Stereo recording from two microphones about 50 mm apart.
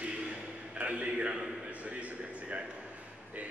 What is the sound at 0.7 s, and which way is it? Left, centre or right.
Speech, right.